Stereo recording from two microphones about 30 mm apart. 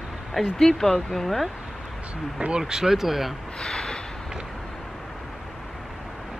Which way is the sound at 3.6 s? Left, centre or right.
Centre.